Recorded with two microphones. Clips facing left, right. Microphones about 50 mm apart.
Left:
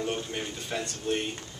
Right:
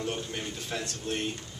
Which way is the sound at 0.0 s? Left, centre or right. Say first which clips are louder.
Left 2 dB; centre.